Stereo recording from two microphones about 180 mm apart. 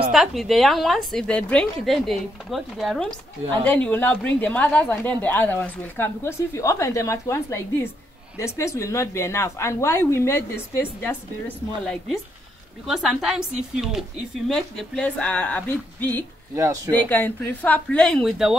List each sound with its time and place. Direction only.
0.1 s a woman's voice: centre (ahead or behind)
11.8 s a woman's voice: centre (ahead or behind)
16.5 s speech: 15° right (ahead or behind)
16.9 s a woman's voice: 10° left (ahead or behind)